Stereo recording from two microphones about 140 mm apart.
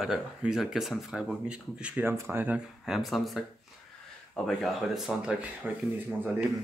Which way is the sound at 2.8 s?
Centre (ahead or behind).